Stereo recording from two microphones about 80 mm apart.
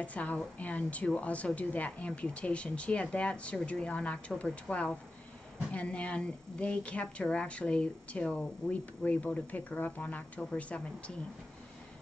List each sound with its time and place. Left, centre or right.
0.0 s a woman's voice: centre